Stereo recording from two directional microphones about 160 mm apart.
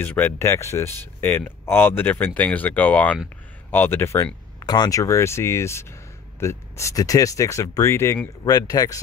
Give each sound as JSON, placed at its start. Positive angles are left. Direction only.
{"t": 0.0, "sound": "speech", "side_deg": 15}